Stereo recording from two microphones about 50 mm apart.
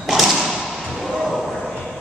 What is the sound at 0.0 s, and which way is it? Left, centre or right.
Thump, centre.